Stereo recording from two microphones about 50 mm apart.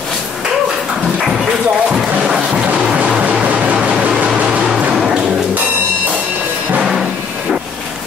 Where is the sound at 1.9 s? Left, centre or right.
Centre.